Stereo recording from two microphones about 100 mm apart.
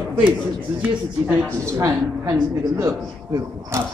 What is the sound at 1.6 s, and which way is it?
Speech, 30° right (ahead or behind).